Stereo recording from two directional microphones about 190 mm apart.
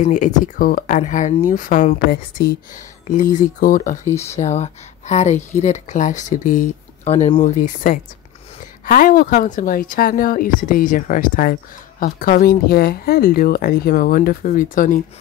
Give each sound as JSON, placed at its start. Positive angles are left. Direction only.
{"t": 0.0, "sound": "speech", "side_deg": 40}
{"t": 4.1, "sound": "speech", "side_deg": 15}
{"t": 4.4, "sound": "speech", "side_deg": 35}
{"t": 7.4, "sound": "speech", "side_deg": 40}